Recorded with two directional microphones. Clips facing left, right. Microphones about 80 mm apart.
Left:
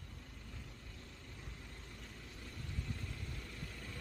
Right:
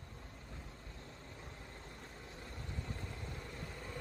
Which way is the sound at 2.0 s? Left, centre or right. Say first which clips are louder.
Right 2 dB; right.